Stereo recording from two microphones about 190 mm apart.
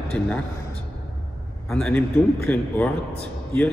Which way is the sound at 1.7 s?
5° left (ahead or behind).